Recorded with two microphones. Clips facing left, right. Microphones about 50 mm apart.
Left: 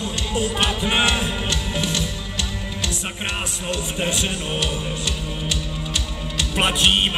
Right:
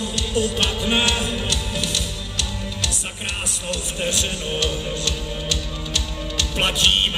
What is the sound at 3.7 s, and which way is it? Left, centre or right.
Music, centre.